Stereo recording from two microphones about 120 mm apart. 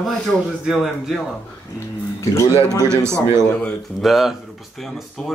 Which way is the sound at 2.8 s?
25° right (ahead or behind).